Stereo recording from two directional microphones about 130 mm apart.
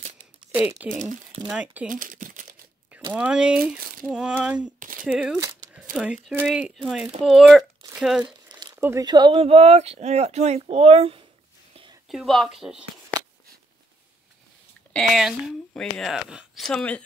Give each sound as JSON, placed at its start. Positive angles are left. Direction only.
{"t": 0.6, "sound": "speech", "side_deg": -15}
{"t": 1.9, "sound": "crumpling", "side_deg": -90}
{"t": 3.1, "sound": "speech", "side_deg": -10}
{"t": 4.7, "sound": "shuffling cards", "side_deg": -90}
{"t": 5.0, "sound": "speech", "side_deg": -5}
{"t": 5.4, "sound": "a sound", "side_deg": -25}
{"t": 5.9, "sound": "speech", "side_deg": 0}
{"t": 8.5, "sound": "a sound", "side_deg": -35}
{"t": 8.7, "sound": "a sound", "side_deg": -20}
{"t": 9.0, "sound": "speech", "side_deg": -35}
{"t": 9.3, "sound": "speech", "side_deg": -45}
{"t": 12.1, "sound": "speech", "side_deg": 0}
{"t": 14.9, "sound": "speech", "side_deg": 0}